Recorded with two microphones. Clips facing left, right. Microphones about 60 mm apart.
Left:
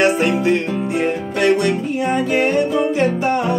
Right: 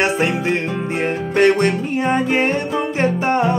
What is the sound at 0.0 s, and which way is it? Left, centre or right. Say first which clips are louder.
Music: left 2 dB; right.